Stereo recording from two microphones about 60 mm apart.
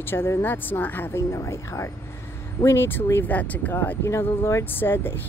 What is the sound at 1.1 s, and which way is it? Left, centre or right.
Speech, left.